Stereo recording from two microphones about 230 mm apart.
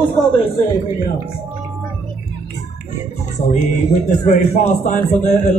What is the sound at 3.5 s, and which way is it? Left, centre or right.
Speech, left.